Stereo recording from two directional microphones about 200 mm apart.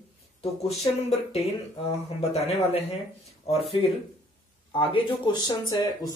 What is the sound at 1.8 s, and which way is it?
Speech, 30° left (ahead or behind).